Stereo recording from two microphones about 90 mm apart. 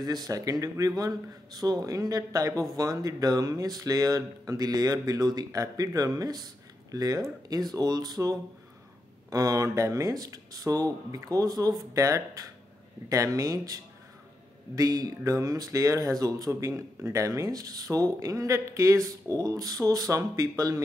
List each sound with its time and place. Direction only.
0.0 s speech: 45° right (ahead or behind)
14.8 s speech: 40° right (ahead or behind)